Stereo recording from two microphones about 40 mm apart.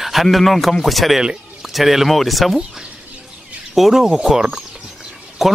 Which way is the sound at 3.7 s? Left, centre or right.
Centre.